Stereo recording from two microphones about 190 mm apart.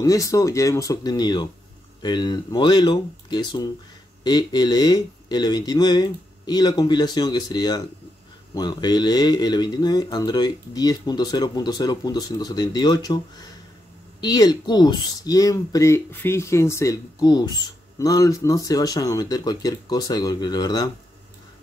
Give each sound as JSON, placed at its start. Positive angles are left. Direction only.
{"t": 0.0, "sound": "speech", "side_deg": 15}